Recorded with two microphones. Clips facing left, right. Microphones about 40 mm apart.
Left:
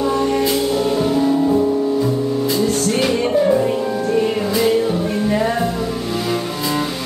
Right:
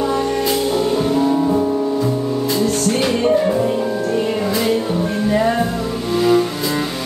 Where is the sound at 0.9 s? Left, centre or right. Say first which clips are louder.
Even; centre.